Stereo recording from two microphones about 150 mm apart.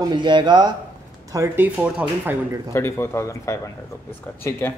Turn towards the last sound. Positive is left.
turn(degrees=20)  # may be behind; listen again after turning